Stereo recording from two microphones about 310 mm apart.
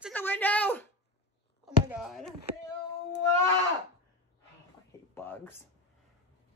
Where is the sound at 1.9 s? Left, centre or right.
Centre.